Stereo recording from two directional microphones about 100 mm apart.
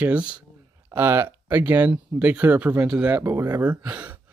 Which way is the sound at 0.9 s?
25° right (ahead or behind).